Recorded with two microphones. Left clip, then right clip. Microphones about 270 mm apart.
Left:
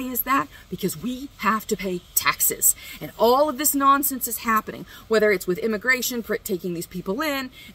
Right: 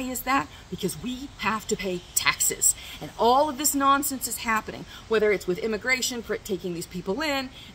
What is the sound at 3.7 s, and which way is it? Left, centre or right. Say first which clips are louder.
Speech: left 3 dB; centre.